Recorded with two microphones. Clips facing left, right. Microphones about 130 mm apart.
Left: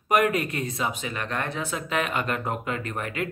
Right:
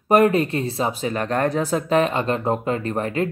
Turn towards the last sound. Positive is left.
turn(degrees=-35)  # may be behind; listen again after turning